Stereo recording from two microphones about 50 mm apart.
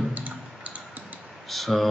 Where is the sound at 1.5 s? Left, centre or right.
Centre.